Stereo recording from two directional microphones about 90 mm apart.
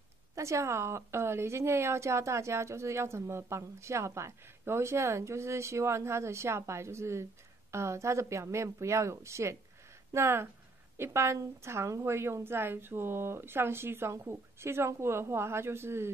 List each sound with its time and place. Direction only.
0.4 s a woman's voice: 35° right (ahead or behind)